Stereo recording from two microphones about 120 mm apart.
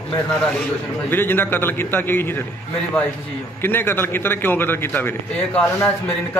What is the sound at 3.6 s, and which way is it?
A man's voice, 20° left (ahead or behind).